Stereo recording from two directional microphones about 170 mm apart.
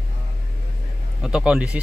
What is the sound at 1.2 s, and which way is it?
Speech, 5° right (ahead or behind).